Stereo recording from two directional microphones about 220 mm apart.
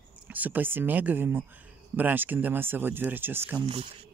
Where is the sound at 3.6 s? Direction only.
25° right (ahead or behind).